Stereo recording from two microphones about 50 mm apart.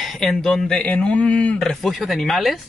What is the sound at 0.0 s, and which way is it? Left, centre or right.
Speech, centre.